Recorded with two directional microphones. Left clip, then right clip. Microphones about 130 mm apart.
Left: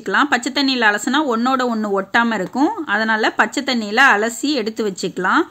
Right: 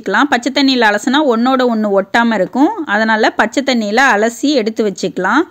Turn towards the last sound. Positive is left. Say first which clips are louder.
# right 3 dB
turn(degrees=-30)  # may be behind; listen again after turning